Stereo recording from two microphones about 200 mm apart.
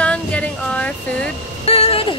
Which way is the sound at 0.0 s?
5° left (ahead or behind).